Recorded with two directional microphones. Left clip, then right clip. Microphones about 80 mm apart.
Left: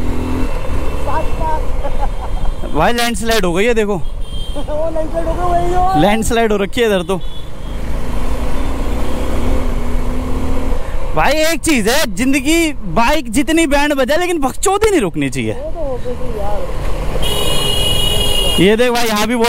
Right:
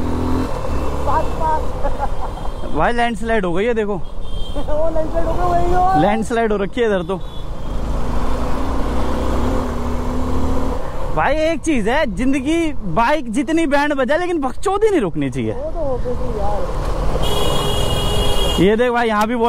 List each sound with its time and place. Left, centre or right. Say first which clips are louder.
0.0 s vehicle: even; centre
2.7 s speech: left 3 dB; left
5.1 s speech: left 2 dB; centre
5.9 s speech: left 2 dB; left
8.9 s vehicle: even; centre
11.1 s speech: left 3 dB; left
16.3 s speech: left 1 dB; right
17.1 s vehicle: left 2 dB; left
17.9 s a sound: left 5 dB; left
18.6 s speech: left 2 dB; left